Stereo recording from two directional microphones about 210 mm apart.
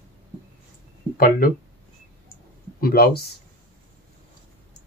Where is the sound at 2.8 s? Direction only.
45° left (ahead or behind).